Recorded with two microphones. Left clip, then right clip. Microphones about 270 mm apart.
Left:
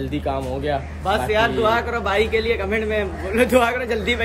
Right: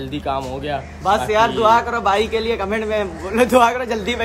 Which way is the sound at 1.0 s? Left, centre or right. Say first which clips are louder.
Right 4 dB; right.